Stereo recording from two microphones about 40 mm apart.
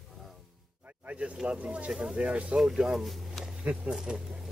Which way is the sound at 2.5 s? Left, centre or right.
Centre.